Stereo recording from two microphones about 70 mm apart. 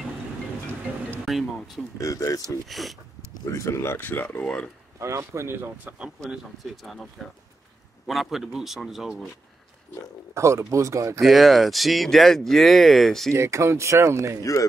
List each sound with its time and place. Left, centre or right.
1.2 s speech: centre
2.0 s speech: left
2.4 s speech: centre
3.4 s speech: left
4.9 s speech: right
5.9 s speech: centre
8.1 s speech: centre
10.3 s speech: right
11.1 s speech: centre
13.3 s speech: right
14.4 s speech: left